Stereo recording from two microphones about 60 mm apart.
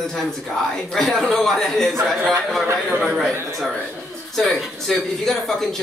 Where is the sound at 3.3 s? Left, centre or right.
Right.